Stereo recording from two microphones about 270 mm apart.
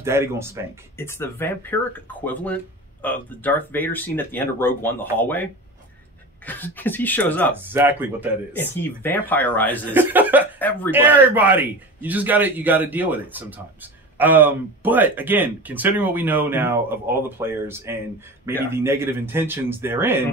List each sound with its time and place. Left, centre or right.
0.0 s speech: centre
0.9 s speech: centre
7.6 s speech: centre
8.5 s speech: centre
9.9 s speech: centre